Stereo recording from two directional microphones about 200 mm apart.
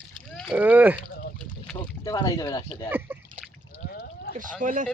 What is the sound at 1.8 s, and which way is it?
Speech, 20° left (ahead or behind).